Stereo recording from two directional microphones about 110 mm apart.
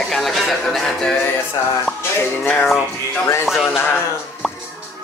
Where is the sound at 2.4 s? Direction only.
15° left (ahead or behind).